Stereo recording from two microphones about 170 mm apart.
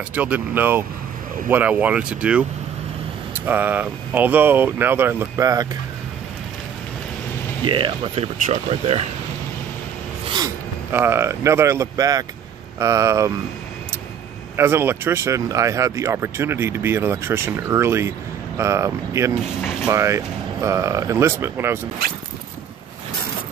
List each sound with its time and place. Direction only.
0.1 s speech: 10° right (ahead or behind)
3.4 s speech: 10° right (ahead or behind)
7.6 s speech: 30° right (ahead or behind)
10.9 s speech: 15° right (ahead or behind)
14.6 s speech: 15° right (ahead or behind)
19.3 s speech: centre (ahead or behind)
19.9 s speech: 15° right (ahead or behind)